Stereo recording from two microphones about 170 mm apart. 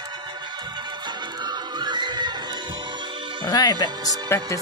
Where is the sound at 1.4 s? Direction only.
25° right (ahead or behind).